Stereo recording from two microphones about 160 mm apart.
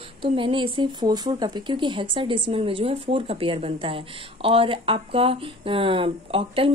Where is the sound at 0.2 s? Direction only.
30° right (ahead or behind).